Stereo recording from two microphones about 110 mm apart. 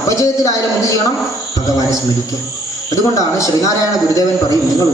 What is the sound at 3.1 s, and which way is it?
Speech, 30° left (ahead or behind).